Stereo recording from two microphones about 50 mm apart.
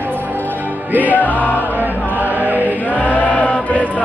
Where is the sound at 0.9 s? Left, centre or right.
Right.